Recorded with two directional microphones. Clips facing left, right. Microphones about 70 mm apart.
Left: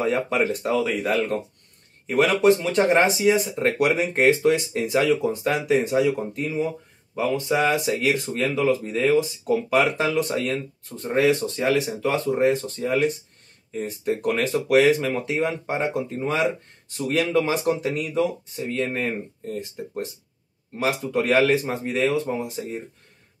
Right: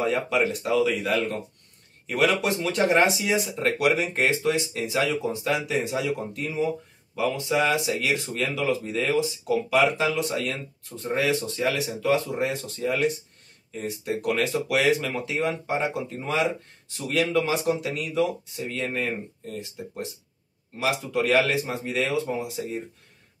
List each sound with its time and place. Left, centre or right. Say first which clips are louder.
0.0 s speech: left 1 dB; left
20.8 s speech: left 2 dB; left